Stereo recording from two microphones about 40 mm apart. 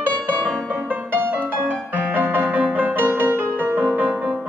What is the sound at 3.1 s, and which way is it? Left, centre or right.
Music, right.